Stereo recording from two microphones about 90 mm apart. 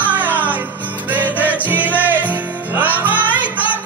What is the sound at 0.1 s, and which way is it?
Music, 20° right (ahead or behind).